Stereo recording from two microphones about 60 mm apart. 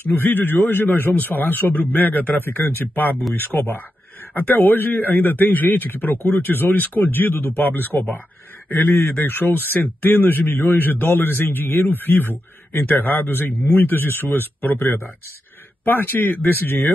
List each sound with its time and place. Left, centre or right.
0.1 s speech: left